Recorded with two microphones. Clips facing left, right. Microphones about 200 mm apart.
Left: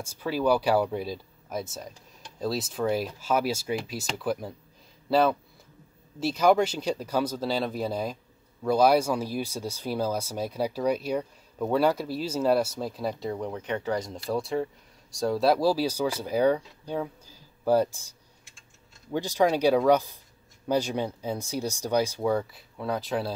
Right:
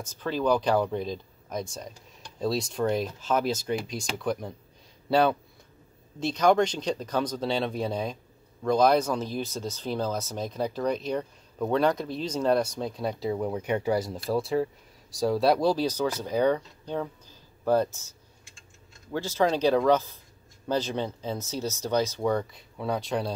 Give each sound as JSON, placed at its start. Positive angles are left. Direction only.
{"t": 0.0, "sound": "speech", "side_deg": 10}
{"t": 19.1, "sound": "speech", "side_deg": 15}